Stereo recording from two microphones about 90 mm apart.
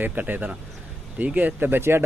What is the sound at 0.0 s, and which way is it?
Speech, 20° right (ahead or behind).